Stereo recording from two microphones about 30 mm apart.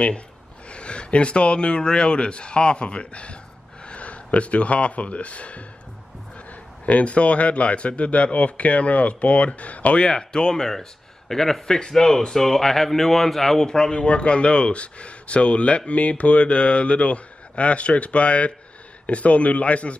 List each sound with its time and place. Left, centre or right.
0.7 s speech: left
6.9 s a man's voice: left
9.9 s speech: left; by 13.7 s centre
13.7 s speech: left
14.0 s a man's voice: left